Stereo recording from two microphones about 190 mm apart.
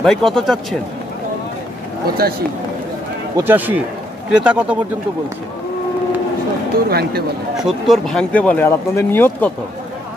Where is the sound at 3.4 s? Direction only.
10° right (ahead or behind).